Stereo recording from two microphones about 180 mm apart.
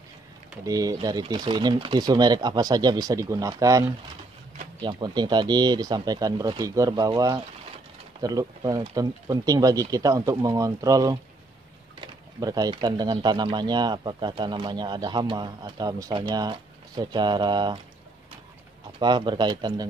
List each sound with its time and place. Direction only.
0.7 s speech: 20° right (ahead or behind)
4.8 s speech: 25° right (ahead or behind)
12.4 s speech: 20° right (ahead or behind)
18.9 s speech: 25° right (ahead or behind)